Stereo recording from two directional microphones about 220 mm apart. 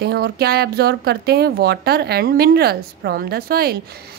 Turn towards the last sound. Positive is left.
turn(degrees=-45)  # may be behind; listen again after turning